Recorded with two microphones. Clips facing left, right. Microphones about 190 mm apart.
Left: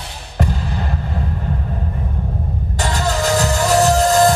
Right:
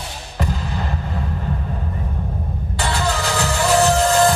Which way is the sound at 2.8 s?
40° left (ahead or behind).